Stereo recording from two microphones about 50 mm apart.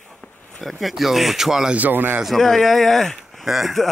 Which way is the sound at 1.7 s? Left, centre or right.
Right.